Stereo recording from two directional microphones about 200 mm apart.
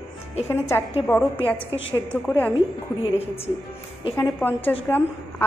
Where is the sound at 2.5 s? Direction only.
25° left (ahead or behind).